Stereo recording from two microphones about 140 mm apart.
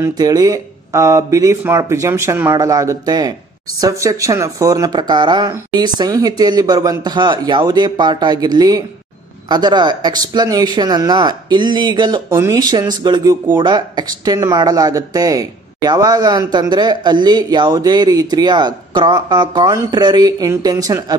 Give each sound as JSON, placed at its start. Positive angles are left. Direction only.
{"t": 0.2, "sound": "speech", "side_deg": -25}
{"t": 12.3, "sound": "speech", "side_deg": -20}